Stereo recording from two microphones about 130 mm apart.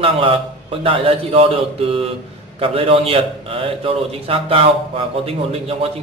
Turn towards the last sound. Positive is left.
turn(degrees=-50)  # may be behind; listen again after turning